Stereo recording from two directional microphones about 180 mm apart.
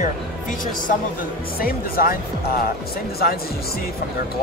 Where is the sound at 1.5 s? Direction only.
55° left (ahead or behind).